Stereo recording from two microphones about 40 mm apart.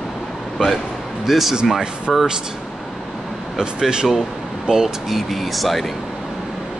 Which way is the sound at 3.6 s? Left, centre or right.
Centre.